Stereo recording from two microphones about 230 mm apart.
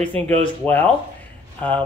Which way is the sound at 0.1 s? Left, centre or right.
Right.